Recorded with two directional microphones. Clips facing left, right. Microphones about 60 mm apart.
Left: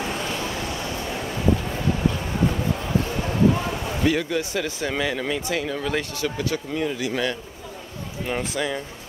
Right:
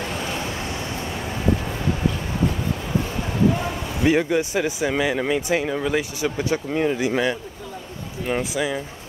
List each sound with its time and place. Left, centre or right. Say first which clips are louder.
4.0 s speech: right 4 dB; right
8.3 s speech: right 3 dB; centre